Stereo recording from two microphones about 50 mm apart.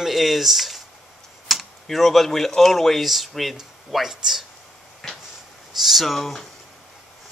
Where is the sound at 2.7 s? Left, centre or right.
Centre.